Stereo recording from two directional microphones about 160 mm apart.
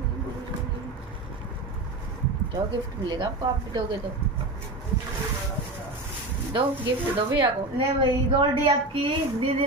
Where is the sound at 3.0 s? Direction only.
30° right (ahead or behind).